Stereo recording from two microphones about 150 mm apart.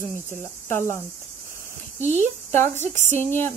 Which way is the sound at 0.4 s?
15° left (ahead or behind).